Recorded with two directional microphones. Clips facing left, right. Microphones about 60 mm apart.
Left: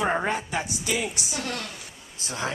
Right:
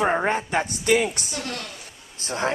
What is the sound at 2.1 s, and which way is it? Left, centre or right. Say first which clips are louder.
Speech: right 5 dB; right.